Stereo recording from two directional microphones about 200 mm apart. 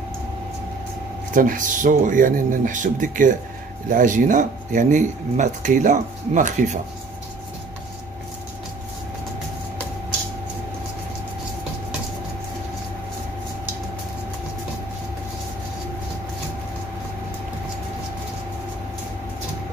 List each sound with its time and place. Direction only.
1.3 s speech: 40° right (ahead or behind)